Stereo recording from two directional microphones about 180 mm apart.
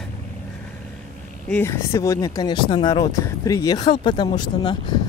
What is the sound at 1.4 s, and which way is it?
Speech, 10° left (ahead or behind).